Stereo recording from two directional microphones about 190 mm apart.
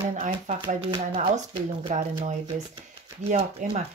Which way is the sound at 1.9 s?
40° right (ahead or behind).